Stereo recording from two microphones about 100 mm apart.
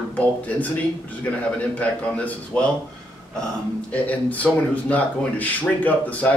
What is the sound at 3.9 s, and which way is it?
Speech, 15° left (ahead or behind).